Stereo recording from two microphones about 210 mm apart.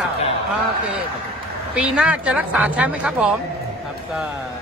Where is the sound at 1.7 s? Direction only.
5° right (ahead or behind).